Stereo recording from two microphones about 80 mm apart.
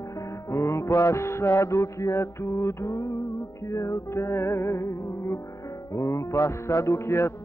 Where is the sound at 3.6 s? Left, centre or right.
Left.